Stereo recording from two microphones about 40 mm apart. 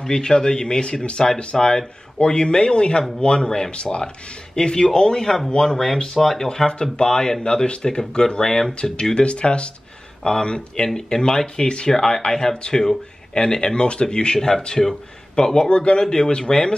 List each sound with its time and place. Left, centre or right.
0.0 s speech: centre
6.1 s speech: centre
6.7 s a man's voice: left